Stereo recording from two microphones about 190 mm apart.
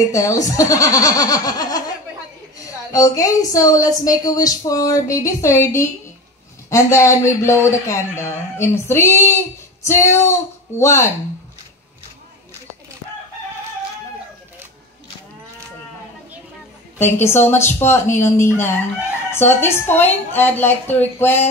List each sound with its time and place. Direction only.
0.1 s a woman's voice: 15° left (ahead or behind)
17.0 s a woman's voice: 10° left (ahead or behind)